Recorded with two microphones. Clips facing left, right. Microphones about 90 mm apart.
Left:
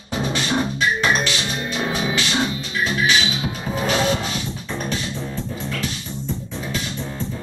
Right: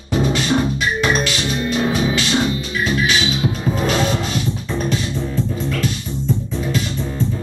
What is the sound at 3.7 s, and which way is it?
Music, 5° left (ahead or behind).